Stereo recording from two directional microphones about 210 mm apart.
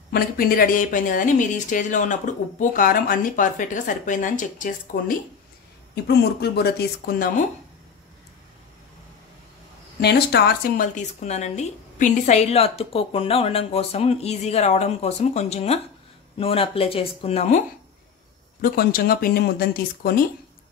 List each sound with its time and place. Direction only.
0.1 s speech: 45° left (ahead or behind)
6.0 s speech: 50° left (ahead or behind)
9.9 s speech: 50° left (ahead or behind); by 17.6 s 30° left (ahead or behind)
18.6 s speech: 45° left (ahead or behind)